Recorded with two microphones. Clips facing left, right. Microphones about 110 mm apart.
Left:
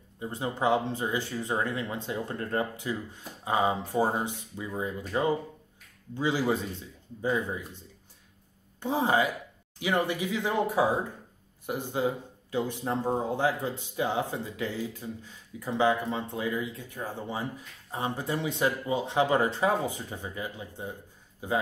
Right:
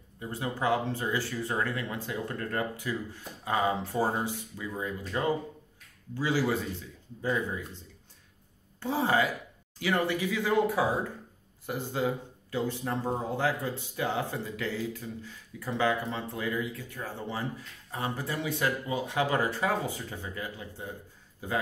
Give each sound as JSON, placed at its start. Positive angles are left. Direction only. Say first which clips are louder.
{"t": 0.2, "sound": "speech", "louder": "left 2 dB", "side_deg": 20}